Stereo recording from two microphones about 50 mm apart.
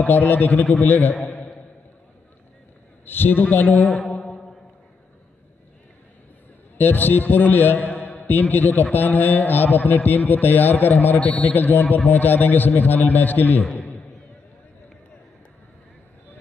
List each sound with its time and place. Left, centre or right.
0.0 s a man's voice: left
1.2 s a sound: left
3.1 s a man's voice: left
3.8 s mantra: centre
6.8 s a man's voice: left
7.9 s a sound: left
8.9 s a man's voice: left